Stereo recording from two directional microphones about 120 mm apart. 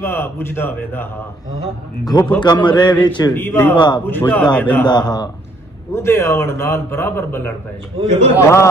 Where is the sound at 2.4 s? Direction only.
35° left (ahead or behind).